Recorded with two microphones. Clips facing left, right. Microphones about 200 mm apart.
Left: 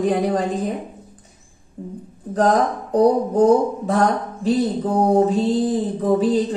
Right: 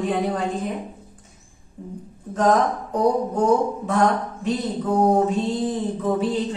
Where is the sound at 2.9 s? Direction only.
35° left (ahead or behind).